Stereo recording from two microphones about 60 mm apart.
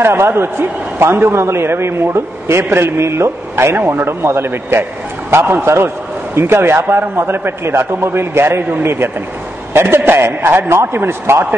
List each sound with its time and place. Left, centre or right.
0.0 s a man's voice: right